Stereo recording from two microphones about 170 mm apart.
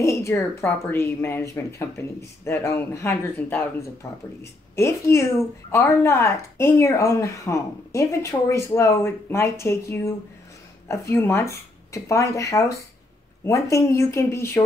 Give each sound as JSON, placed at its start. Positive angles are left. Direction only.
{"t": 0.0, "sound": "speech", "side_deg": 15}